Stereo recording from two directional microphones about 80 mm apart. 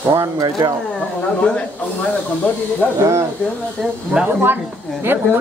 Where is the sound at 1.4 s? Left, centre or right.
Centre.